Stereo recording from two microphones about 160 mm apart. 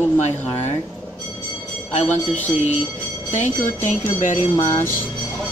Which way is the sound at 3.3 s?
50° left (ahead or behind).